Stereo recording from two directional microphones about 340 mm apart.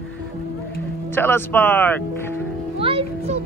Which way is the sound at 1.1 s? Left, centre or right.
Centre.